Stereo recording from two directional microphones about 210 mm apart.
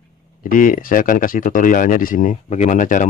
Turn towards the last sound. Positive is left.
turn(degrees=40)  # may be behind; listen again after turning